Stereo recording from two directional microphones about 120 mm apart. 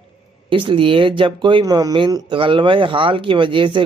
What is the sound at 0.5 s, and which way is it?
Speech, 45° right (ahead or behind).